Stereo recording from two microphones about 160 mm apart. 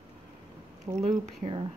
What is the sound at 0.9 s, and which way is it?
Speech, 45° right (ahead or behind).